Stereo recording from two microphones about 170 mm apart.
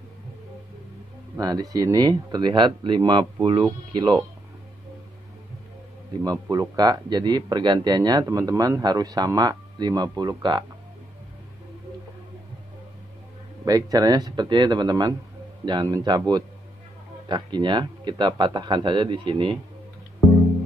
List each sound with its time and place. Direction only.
1.3 s speech: 20° right (ahead or behind)
6.2 s speech: 20° right (ahead or behind)
13.7 s speech: 20° right (ahead or behind)
17.3 s speech: 25° right (ahead or behind)